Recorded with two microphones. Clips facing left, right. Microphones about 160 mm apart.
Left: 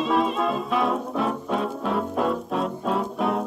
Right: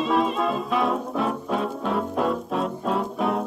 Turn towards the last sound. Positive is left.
turn(degrees=0)  # may be behind; listen again after turning